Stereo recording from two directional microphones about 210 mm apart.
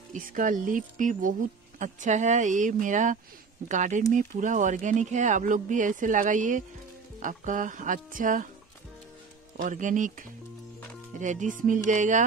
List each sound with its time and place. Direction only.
0.1 s speech: 40° right (ahead or behind)
9.6 s speech: 35° right (ahead or behind)